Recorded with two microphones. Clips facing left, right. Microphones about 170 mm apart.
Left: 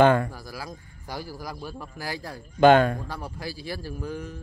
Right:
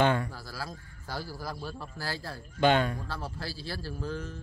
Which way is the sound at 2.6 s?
50° left (ahead or behind).